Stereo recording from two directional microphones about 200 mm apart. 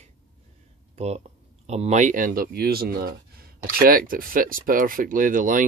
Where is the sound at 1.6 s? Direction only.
30° right (ahead or behind).